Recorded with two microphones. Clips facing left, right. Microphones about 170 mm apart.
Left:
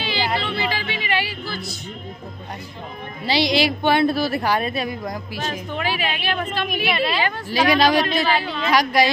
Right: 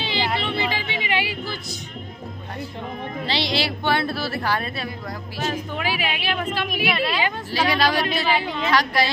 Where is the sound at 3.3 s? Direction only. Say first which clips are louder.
Left 6 dB; 15° left (ahead or behind).